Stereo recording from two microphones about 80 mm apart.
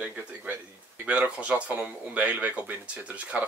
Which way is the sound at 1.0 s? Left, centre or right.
Centre.